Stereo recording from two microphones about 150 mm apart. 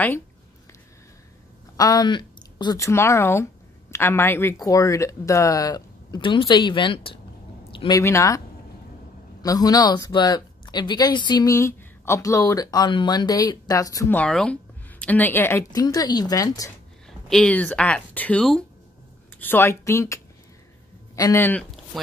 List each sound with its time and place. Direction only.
1.8 s speech: 25° left (ahead or behind)
7.9 s speech: 20° left (ahead or behind)
9.4 s speech: 25° left (ahead or behind)
14.1 s speech: 5° left (ahead or behind); by 16.7 s 25° left (ahead or behind)
17.3 s speech: 10° left (ahead or behind)
21.2 s speech: 15° left (ahead or behind)